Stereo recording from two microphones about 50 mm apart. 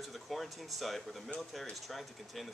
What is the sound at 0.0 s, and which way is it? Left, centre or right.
Speech, centre.